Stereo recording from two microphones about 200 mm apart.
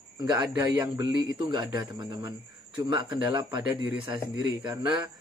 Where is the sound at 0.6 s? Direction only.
20° right (ahead or behind).